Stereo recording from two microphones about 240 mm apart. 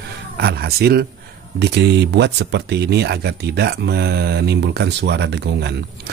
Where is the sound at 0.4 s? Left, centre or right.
Right.